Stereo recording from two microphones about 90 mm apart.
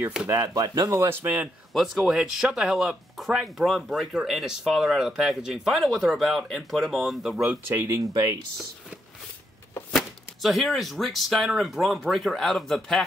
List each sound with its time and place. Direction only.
0.3 s speech: 35° right (ahead or behind)
1.7 s speech: 5° right (ahead or behind)
7.6 s speech: 35° right (ahead or behind)
9.9 s speech: centre (ahead or behind)